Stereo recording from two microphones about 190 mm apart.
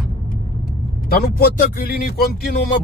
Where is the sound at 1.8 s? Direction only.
55° left (ahead or behind).